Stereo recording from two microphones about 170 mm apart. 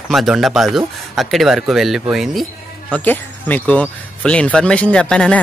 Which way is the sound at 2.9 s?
10° left (ahead or behind).